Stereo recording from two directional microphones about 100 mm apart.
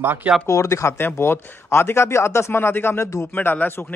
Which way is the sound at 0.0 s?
20° right (ahead or behind).